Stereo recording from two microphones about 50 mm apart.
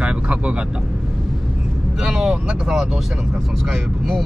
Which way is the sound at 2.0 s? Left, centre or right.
Centre.